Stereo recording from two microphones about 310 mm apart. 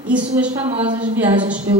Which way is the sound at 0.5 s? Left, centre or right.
Centre.